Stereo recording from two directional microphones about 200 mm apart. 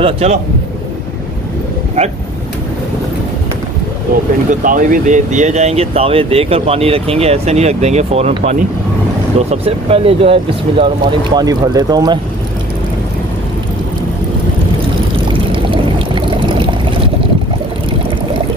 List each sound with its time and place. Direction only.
0.0 s speech: 30° right (ahead or behind)
4.1 s speech: 45° right (ahead or behind); by 12.2 s 20° right (ahead or behind)
15.1 s pour: 25° right (ahead or behind)